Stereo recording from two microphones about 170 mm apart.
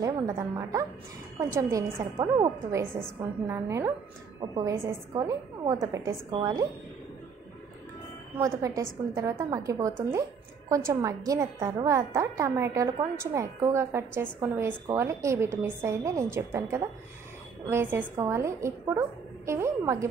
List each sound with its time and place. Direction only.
0.0 s a woman's voice: 15° right (ahead or behind)
8.4 s a woman's voice: 20° right (ahead or behind)